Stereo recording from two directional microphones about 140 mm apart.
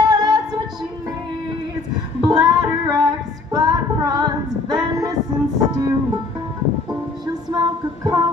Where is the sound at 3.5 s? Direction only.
25° right (ahead or behind).